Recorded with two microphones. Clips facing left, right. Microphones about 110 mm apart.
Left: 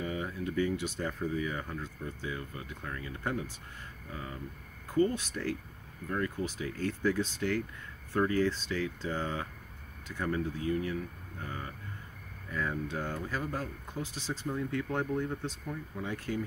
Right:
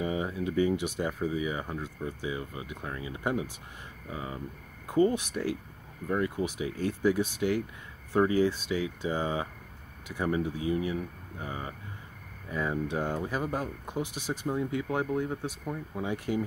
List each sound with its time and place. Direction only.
0.0 s speech: 20° right (ahead or behind)
15.6 s speech: 25° right (ahead or behind)